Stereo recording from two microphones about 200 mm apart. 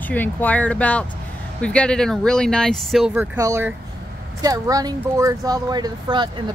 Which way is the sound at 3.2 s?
15° right (ahead or behind).